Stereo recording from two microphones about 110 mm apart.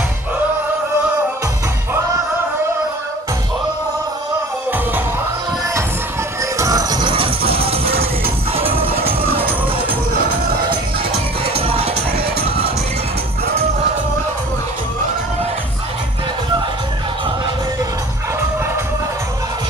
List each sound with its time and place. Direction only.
6.6 s music: 35° right (ahead or behind); by 9.5 s 55° right (ahead or behind)
11.4 s music: 60° right (ahead or behind)